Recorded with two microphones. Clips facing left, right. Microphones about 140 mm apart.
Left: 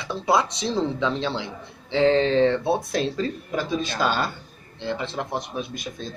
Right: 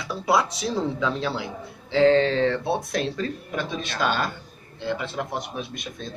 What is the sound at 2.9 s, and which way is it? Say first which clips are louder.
Speech: left 2 dB; 30° left (ahead or behind).